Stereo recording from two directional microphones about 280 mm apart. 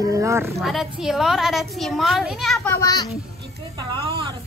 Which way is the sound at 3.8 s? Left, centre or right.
Centre.